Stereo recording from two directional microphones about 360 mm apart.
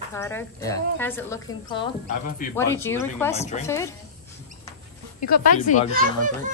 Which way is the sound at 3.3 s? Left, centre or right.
Centre.